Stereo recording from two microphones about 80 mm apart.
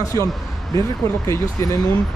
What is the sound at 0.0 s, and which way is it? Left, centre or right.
Speech, left.